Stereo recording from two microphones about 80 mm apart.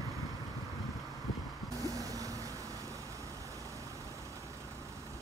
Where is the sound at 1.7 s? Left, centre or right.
Right.